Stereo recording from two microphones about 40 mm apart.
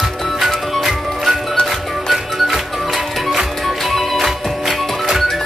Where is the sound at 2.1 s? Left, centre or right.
Centre.